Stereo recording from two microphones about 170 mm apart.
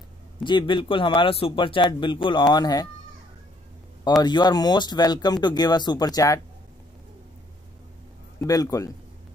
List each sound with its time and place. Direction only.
0.4 s speech: 25° left (ahead or behind)
4.2 s speech: 25° left (ahead or behind)
8.4 s speech: 20° left (ahead or behind)